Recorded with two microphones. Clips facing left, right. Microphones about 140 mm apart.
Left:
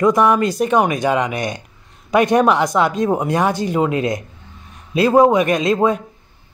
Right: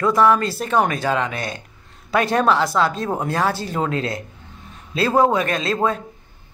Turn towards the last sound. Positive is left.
turn(degrees=15)  # may be behind; listen again after turning